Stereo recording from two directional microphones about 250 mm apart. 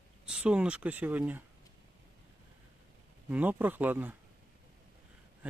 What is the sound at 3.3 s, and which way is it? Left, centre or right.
Speech, centre.